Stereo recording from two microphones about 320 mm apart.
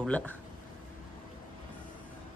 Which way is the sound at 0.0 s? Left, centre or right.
Centre.